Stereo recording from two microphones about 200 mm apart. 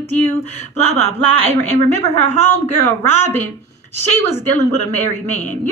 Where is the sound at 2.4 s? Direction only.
10° left (ahead or behind).